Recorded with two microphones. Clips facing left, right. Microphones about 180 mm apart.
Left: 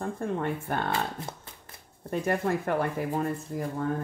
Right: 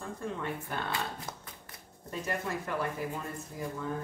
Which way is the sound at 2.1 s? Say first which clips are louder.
Left 8 dB; 55° left (ahead or behind).